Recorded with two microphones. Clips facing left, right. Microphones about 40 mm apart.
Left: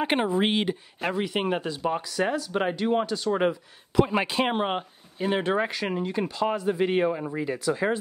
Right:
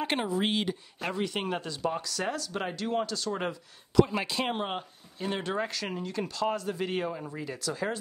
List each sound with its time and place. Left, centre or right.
0.0 s speech: left
0.3 s speech: left